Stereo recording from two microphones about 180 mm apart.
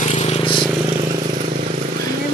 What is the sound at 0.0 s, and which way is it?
Vehicle, 40° left (ahead or behind).